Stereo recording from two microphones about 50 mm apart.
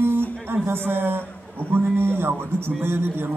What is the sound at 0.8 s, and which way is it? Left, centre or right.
A man's voice, right.